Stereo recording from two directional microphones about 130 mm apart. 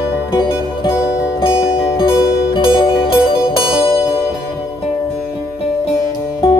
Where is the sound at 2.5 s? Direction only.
40° left (ahead or behind).